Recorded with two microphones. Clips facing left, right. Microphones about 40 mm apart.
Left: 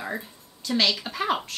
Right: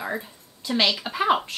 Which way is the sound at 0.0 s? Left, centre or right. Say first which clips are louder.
Right 2 dB; centre.